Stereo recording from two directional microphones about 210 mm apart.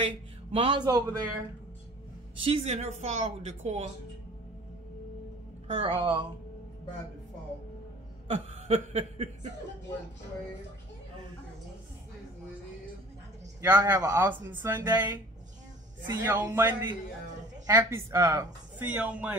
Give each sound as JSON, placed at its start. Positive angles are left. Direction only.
{"t": 0.0, "sound": "speech", "side_deg": -25}
{"t": 2.3, "sound": "speech", "side_deg": -25}
{"t": 5.7, "sound": "speech", "side_deg": -25}
{"t": 8.3, "sound": "speech", "side_deg": -30}
{"t": 13.6, "sound": "speech", "side_deg": -10}